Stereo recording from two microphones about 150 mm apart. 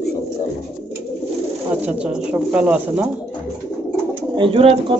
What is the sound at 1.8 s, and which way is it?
Speech, 10° right (ahead or behind).